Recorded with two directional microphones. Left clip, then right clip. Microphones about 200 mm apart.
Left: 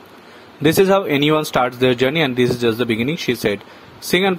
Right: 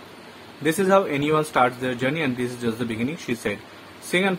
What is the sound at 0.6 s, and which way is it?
Speech, 40° left (ahead or behind).